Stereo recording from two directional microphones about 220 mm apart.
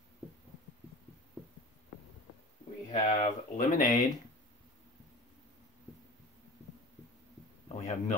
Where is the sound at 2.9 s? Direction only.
35° left (ahead or behind).